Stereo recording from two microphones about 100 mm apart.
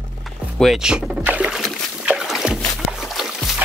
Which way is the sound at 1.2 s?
15° right (ahead or behind).